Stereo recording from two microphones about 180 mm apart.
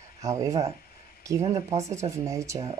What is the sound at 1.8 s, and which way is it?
Speech, 15° right (ahead or behind).